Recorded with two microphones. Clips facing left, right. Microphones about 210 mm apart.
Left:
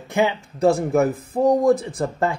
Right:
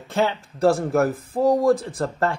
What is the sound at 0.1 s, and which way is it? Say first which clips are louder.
Speech: left 2 dB; 15° left (ahead or behind).